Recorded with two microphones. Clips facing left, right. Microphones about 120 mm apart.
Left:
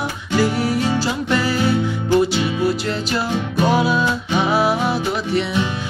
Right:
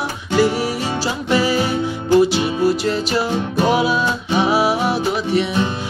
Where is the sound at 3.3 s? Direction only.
40° right (ahead or behind).